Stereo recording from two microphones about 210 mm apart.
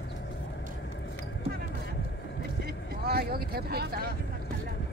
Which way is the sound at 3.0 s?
45° right (ahead or behind).